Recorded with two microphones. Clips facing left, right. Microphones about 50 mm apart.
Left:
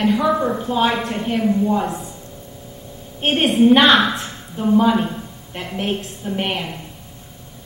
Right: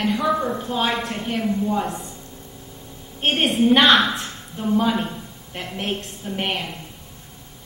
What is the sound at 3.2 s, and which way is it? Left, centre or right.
A woman's voice, centre.